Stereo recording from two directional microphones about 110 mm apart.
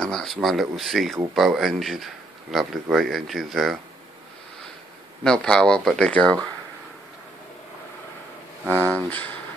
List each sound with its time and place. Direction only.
0.0 s speech: 5° left (ahead or behind)
5.2 s speech: 5° left (ahead or behind)
8.7 s speech: 15° left (ahead or behind)